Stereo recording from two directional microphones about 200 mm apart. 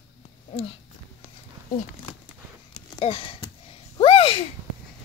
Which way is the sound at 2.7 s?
30° left (ahead or behind).